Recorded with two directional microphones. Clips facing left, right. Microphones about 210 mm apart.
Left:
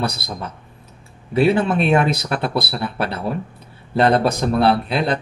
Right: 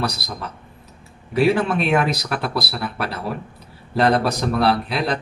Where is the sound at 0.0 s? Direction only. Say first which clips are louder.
Left 1 dB; 25° left (ahead or behind).